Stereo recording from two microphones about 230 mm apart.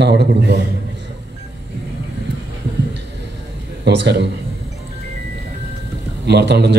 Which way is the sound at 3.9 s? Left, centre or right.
Right.